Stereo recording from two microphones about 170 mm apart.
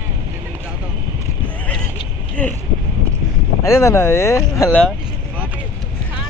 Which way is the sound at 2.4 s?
10° left (ahead or behind).